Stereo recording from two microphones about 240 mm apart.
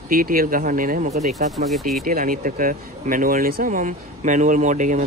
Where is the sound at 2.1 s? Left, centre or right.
Right.